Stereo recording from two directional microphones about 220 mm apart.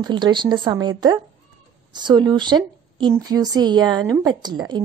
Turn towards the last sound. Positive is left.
turn(degrees=-20)  # may be behind; listen again after turning